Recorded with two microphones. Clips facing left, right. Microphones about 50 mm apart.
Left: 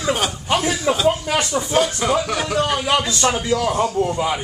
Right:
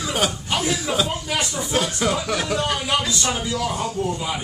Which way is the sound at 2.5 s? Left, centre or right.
Centre.